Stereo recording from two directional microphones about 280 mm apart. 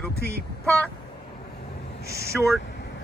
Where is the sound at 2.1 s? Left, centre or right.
Left.